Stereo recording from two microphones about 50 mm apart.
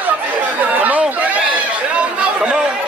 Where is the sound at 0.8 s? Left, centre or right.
Right.